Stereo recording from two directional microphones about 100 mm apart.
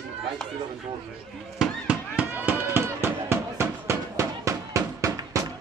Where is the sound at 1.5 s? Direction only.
10° right (ahead or behind).